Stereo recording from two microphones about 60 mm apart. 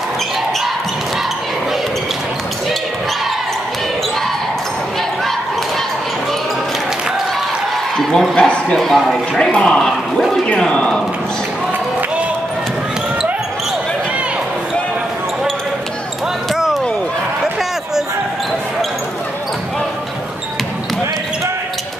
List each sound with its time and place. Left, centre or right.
8.0 s a man's voice: centre
8.5 s a man's voice: centre
8.8 s speech: centre
9.4 s a man's voice: centre
9.8 s speech: centre
10.4 s speech: centre
16.5 s a sound: centre